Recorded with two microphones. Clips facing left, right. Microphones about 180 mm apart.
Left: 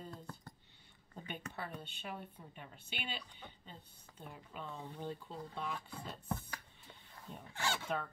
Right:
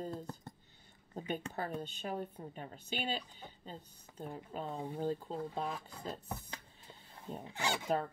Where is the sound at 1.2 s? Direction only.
40° right (ahead or behind).